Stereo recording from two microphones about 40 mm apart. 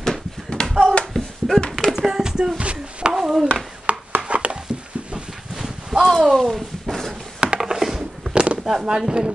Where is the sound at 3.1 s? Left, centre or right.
Centre.